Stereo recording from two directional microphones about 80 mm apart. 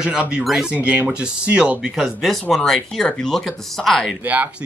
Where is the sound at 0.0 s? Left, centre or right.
Centre.